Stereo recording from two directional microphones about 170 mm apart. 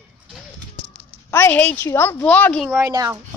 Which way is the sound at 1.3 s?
10° left (ahead or behind).